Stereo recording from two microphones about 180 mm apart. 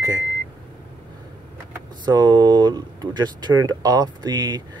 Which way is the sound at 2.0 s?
25° right (ahead or behind).